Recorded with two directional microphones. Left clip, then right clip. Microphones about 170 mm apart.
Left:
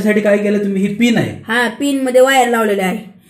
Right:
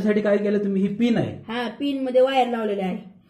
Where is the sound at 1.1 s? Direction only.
15° left (ahead or behind).